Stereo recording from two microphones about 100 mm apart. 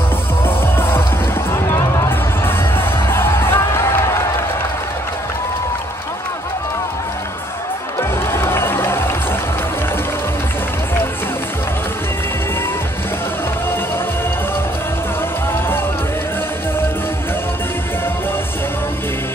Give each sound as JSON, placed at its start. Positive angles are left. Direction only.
{"t": 0.5, "sound": "music", "side_deg": 25}
{"t": 2.0, "sound": "music", "side_deg": 25}
{"t": 8.0, "sound": "music", "side_deg": 25}